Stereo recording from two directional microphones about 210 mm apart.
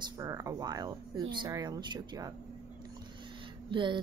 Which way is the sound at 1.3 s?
20° right (ahead or behind).